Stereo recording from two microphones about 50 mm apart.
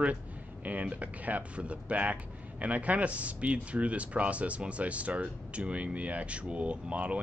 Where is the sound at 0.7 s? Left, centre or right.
Right.